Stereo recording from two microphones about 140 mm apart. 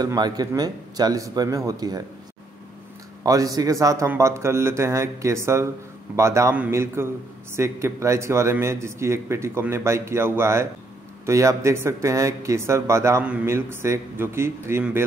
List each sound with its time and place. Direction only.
0.0 s speech: 30° right (ahead or behind)
3.3 s a man's voice: 25° right (ahead or behind)